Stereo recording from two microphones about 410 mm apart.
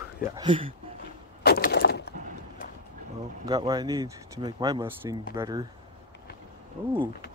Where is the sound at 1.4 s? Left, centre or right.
Left.